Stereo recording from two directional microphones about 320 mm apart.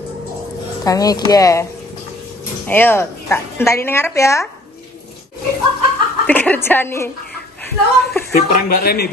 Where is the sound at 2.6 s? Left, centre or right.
Centre.